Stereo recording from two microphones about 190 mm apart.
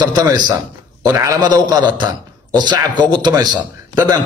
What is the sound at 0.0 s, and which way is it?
A man's voice, 20° right (ahead or behind).